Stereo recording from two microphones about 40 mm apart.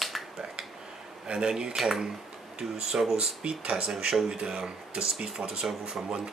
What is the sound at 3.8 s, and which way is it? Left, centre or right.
Speech, centre.